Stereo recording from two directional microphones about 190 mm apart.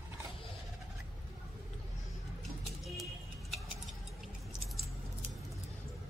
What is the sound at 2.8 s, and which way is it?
Music, centre (ahead or behind).